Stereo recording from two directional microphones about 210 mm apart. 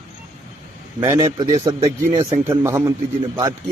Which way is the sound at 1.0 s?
15° right (ahead or behind).